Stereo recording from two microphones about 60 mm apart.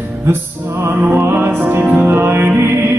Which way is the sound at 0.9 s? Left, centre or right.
Right.